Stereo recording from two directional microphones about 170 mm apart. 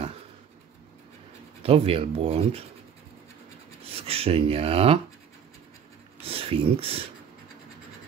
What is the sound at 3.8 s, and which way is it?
Speech, 35° right (ahead or behind).